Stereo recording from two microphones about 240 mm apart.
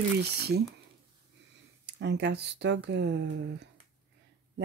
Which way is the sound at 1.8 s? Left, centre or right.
Right.